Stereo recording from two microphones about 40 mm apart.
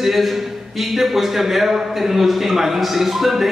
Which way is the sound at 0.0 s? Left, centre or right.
Centre.